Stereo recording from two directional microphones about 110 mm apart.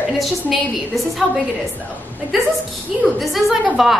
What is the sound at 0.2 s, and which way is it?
A woman's voice, centre (ahead or behind).